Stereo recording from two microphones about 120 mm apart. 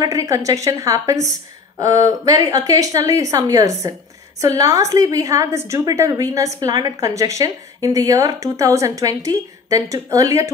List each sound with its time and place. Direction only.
0.0 s a woman's voice: 25° right (ahead or behind)
1.8 s a sound: 30° right (ahead or behind)
2.5 s a woman's voice: 30° right (ahead or behind)